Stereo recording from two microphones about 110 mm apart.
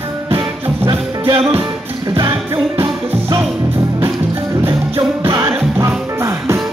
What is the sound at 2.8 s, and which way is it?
Music, 25° right (ahead or behind).